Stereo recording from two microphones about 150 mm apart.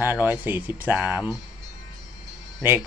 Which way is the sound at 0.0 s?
10° right (ahead or behind).